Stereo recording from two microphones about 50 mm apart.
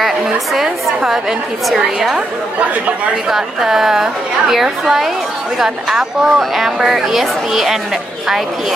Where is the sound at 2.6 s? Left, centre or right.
Right.